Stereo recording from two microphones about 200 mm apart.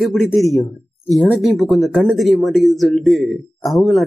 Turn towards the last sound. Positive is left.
turn(degrees=0)  # may be behind; listen again after turning